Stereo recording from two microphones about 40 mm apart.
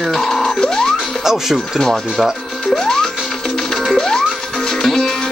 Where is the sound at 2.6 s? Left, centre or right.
Centre.